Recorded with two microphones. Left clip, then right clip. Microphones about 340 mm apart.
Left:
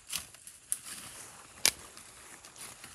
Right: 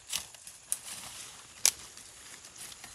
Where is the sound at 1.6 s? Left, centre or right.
Left.